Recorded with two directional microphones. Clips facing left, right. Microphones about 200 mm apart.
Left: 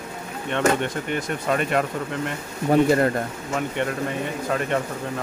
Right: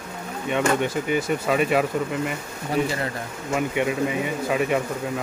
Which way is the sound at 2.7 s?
50° left (ahead or behind).